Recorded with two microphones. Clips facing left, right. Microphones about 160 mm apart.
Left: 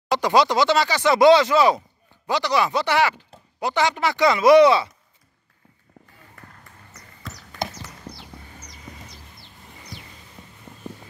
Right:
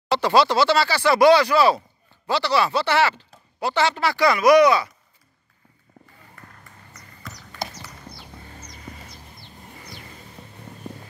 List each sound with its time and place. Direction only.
0.1 s speech: 15° left (ahead or behind)
7.6 s horse: 55° left (ahead or behind)
8.1 s horse: 20° left (ahead or behind)